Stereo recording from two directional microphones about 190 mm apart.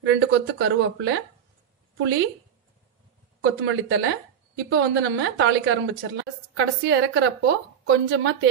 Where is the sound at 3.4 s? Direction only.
90° right.